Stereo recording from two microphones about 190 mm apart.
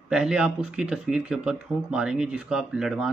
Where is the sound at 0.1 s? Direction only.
5° right (ahead or behind).